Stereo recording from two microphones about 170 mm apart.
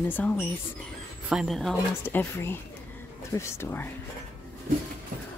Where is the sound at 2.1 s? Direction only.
10° left (ahead or behind).